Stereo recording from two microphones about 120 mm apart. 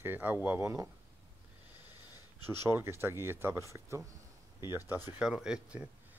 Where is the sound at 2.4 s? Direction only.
35° left (ahead or behind).